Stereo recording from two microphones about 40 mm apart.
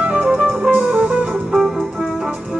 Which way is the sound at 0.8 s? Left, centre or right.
Right.